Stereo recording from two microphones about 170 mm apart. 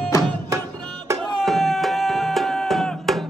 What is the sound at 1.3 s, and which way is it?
Music, centre (ahead or behind).